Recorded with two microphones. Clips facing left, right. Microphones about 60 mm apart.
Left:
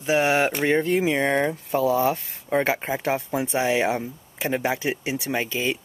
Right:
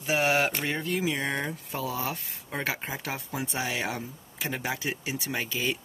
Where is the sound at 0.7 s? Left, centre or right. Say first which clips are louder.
Left 8 dB; left.